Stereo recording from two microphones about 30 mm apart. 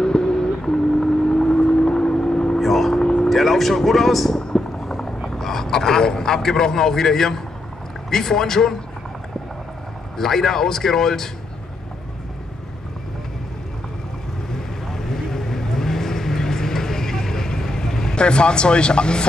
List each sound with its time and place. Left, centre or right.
0.0 s vehicle: left
2.6 s vehicle: centre
2.9 s vehicle: left
3.3 s vehicle: centre
3.8 s speech: centre
4.4 s a sound: left
4.7 s helicopter: centre
5.3 s a man's voice: centre
10.1 s speech: centre
14.5 s vehicle: centre
18.1 s speech: left